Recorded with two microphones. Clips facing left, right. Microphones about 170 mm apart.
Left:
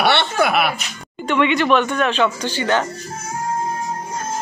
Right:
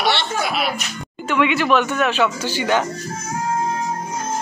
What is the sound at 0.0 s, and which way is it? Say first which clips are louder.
Speech: left 4 dB; 60° left (ahead or behind).